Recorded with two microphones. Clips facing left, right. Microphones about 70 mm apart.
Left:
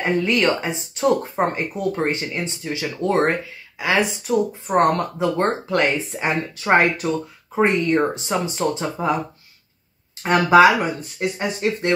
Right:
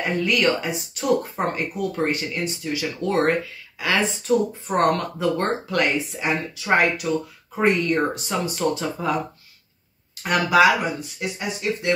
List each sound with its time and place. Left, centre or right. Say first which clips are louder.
0.0 s speech: left 2 dB; left
4.3 s speech: even; centre
4.6 s speech: left 3 dB; left
7.5 s speech: left 2 dB; left
10.2 s speech: left 4 dB; left